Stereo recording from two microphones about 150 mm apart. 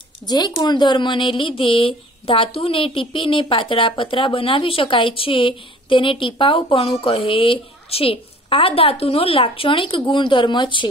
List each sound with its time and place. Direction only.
0.3 s speech: 25° left (ahead or behind)